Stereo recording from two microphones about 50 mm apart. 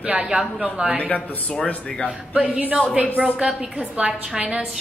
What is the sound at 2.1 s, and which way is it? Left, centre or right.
Speech, right.